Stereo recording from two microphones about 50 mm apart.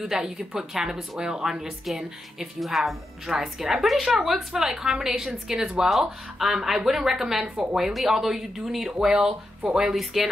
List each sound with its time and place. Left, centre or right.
0.0 s a woman's voice: centre